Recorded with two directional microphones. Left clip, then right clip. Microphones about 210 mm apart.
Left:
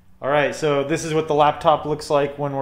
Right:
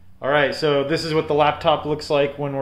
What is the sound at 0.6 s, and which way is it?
Speech, 5° left (ahead or behind).